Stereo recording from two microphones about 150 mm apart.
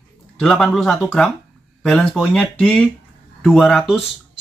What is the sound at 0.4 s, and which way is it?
Speech, 5° left (ahead or behind).